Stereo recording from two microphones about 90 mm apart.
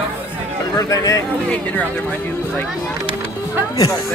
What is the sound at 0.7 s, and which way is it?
Speech, 40° left (ahead or behind).